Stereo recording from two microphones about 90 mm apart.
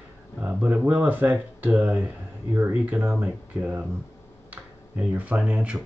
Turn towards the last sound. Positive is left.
turn(degrees=-15)  # may be behind; listen again after turning